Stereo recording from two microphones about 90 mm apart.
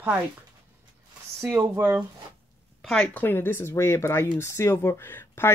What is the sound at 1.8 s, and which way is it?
Speech, 20° right (ahead or behind).